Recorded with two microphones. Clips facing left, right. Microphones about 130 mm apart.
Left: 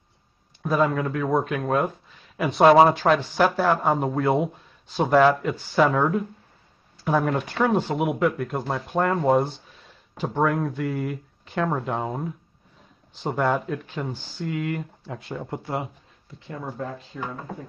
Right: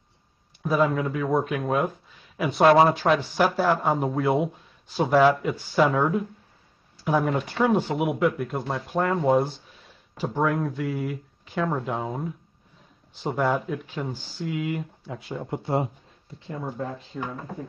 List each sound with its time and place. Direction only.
0.7 s speech: centre (ahead or behind)
3.0 s speech: 10° left (ahead or behind)
3.3 s speech: 5° right (ahead or behind)
15.5 s speech: 25° right (ahead or behind)